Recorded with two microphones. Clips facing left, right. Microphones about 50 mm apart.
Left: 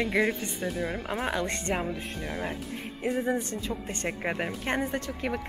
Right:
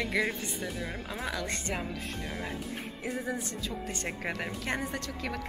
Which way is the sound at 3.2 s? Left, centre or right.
Left.